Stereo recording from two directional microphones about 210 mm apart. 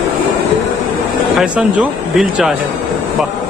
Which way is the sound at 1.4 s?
5° right (ahead or behind).